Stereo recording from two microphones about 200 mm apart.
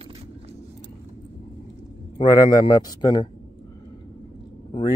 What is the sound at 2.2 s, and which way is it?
Speech, 20° left (ahead or behind).